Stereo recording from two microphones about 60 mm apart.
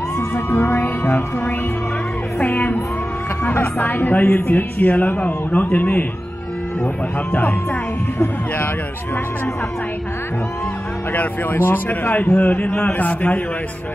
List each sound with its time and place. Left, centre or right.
0.5 s music: left
2.3 s music: left
3.4 s speech: left
11.1 s speech: left